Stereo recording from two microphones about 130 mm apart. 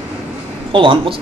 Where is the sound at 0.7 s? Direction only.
40° right (ahead or behind).